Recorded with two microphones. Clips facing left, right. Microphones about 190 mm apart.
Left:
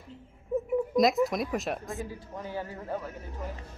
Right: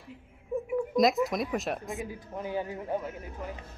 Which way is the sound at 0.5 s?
5° left (ahead or behind).